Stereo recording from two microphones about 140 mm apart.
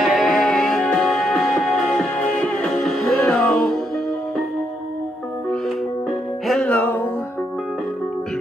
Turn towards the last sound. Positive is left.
turn(degrees=10)  # may be behind; listen again after turning